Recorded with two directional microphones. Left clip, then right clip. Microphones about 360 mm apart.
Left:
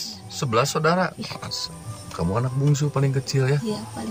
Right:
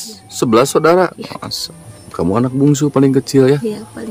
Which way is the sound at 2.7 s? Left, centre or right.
Right.